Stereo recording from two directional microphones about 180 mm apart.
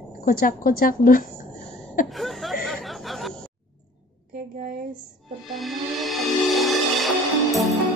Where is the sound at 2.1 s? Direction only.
Centre (ahead or behind).